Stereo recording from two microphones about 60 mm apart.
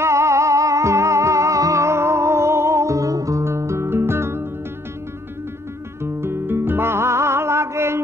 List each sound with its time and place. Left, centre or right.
0.0 s music: right
6.2 s music: right